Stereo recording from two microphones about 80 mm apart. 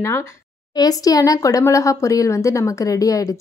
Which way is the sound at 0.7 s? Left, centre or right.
Left.